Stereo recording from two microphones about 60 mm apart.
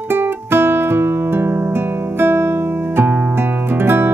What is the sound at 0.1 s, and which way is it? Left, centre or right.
Music, right.